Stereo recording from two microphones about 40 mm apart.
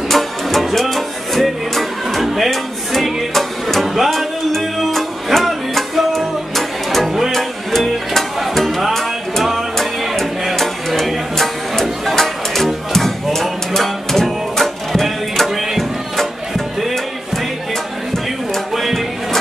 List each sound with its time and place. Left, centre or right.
0.1 s music: centre